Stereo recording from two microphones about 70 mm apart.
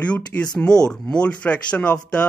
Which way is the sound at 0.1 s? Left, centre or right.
Centre.